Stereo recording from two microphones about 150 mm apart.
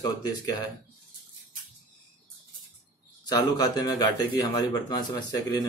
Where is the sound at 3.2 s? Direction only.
25° left (ahead or behind).